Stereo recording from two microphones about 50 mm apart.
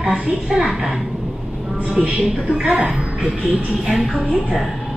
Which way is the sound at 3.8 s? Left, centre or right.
Centre.